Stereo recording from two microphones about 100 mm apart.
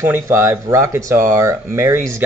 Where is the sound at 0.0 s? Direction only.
25° right (ahead or behind).